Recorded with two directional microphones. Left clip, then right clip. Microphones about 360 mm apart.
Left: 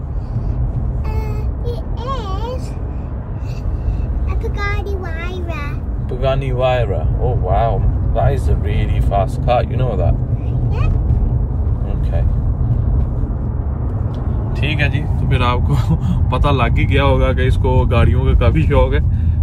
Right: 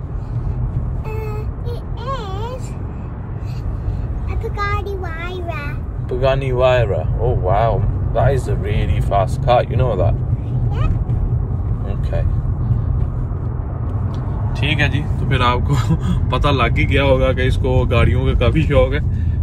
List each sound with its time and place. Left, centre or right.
6.0 s speech: centre
14.6 s speech: centre